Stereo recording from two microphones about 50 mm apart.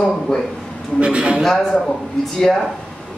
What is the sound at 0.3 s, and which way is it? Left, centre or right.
Speech, centre.